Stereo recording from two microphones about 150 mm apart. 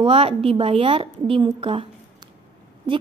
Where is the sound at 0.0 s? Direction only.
40° right (ahead or behind).